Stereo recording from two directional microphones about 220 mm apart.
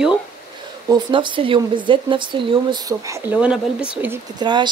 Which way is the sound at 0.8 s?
20° right (ahead or behind).